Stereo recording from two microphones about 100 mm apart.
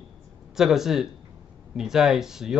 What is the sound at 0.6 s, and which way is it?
Speech, 5° right (ahead or behind).